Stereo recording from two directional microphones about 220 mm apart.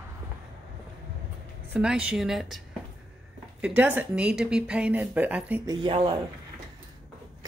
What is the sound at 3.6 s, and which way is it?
Speech, 5° right (ahead or behind).